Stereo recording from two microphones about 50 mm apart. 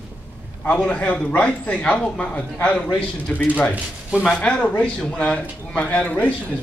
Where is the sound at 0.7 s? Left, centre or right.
Left.